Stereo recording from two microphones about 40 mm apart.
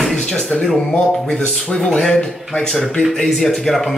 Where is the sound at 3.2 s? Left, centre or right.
Centre.